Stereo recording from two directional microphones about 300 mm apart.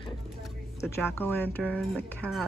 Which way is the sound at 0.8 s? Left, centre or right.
Centre.